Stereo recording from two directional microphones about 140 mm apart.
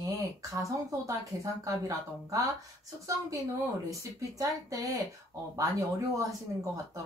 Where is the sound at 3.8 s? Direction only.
25° right (ahead or behind).